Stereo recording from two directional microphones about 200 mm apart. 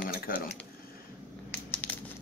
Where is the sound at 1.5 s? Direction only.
10° left (ahead or behind).